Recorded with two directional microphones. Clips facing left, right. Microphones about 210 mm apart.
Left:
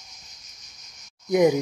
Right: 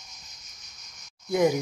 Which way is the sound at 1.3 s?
15° left (ahead or behind).